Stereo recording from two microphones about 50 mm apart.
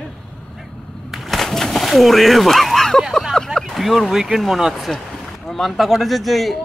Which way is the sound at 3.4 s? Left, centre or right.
Centre.